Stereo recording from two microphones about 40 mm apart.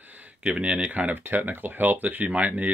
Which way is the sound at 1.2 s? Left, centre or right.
Right.